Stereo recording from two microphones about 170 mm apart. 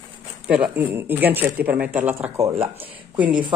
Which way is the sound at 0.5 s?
10° right (ahead or behind).